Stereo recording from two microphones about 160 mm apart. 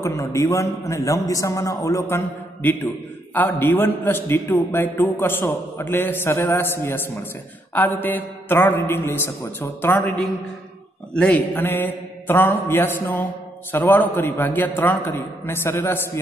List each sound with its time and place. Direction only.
0.0 s a man's voice: 20° left (ahead or behind)
3.3 s mantra: 15° left (ahead or behind)